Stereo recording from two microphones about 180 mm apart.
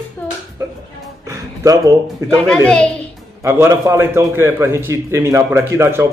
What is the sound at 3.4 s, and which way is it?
A man's voice, 15° right (ahead or behind).